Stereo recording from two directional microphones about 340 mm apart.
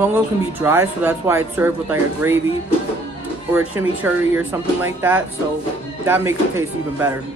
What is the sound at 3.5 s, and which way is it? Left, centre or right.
Speech, centre.